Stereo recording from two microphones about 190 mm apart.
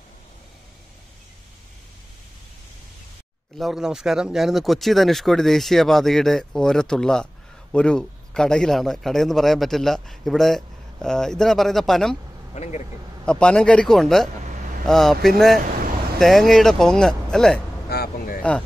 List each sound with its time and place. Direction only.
3.5 s speech: centre (ahead or behind)
12.5 s speech: 35° left (ahead or behind)
13.2 s speech: 5° left (ahead or behind)
17.8 s speech: 55° left (ahead or behind)